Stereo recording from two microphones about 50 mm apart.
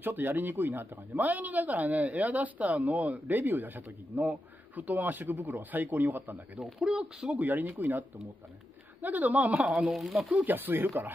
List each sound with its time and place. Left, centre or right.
0.0 s speech: right
6.6 s speech: centre
7.2 s speech: right
9.0 s speech: right
9.6 s speech: centre
10.3 s speech: right